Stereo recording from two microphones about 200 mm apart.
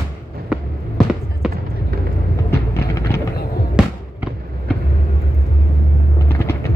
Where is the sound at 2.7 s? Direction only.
15° left (ahead or behind).